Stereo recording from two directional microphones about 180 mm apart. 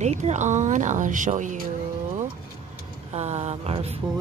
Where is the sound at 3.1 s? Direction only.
40° right (ahead or behind).